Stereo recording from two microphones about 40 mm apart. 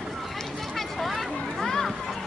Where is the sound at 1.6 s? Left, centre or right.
Centre.